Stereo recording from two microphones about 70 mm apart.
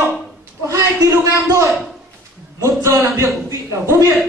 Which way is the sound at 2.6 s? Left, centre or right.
Right.